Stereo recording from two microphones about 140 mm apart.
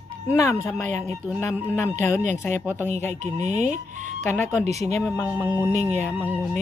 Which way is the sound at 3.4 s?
60° right (ahead or behind).